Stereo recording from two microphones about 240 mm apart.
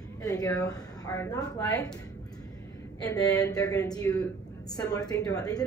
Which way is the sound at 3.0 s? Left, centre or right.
Centre.